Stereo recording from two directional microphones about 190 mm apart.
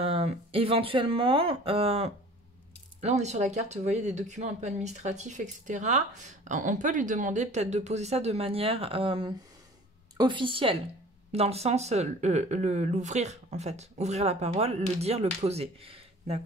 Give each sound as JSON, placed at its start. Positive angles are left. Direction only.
{"t": 0.0, "sound": "speech", "side_deg": -30}